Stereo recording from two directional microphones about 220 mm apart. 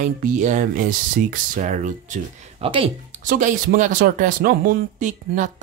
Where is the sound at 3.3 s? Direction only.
35° right (ahead or behind).